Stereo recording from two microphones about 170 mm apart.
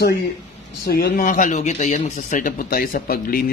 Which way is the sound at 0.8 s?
60° left (ahead or behind).